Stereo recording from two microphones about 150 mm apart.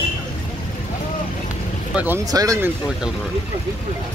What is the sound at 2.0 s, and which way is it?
Speech, 15° right (ahead or behind).